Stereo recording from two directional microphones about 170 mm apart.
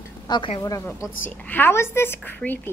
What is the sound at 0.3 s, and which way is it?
Speech, 30° left (ahead or behind).